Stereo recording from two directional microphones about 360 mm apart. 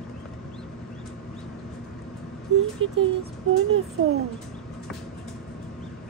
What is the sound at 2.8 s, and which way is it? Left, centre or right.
Speech, right.